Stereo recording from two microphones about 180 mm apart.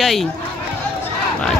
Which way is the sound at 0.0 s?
Centre (ahead or behind).